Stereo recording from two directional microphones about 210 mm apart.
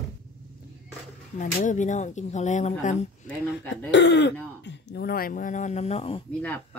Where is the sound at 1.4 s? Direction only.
35° left (ahead or behind).